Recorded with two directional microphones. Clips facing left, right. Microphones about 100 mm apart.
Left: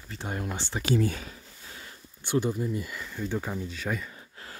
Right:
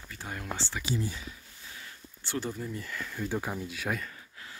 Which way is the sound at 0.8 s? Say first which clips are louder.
Left 9 dB; 60° left (ahead or behind).